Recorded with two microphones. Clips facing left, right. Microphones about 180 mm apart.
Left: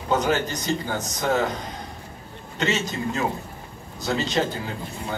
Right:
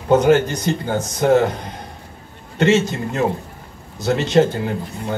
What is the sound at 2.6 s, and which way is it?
A man's voice, 60° right (ahead or behind).